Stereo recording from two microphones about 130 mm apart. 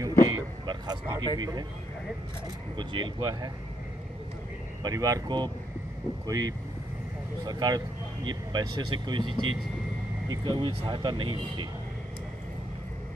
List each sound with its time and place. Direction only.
0.0 s vehicle: 30° right (ahead or behind)
1.4 s speech: 30° right (ahead or behind)
2.8 s speech: 35° right (ahead or behind)
4.8 s speech: 25° right (ahead or behind)